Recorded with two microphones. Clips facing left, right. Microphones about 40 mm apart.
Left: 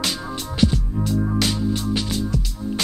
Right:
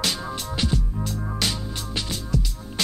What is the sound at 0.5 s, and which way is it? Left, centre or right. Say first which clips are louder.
Music: left 6 dB; centre.